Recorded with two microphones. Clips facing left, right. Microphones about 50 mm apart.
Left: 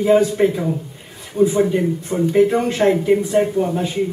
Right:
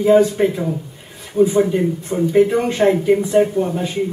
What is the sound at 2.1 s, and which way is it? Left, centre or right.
Speech, left.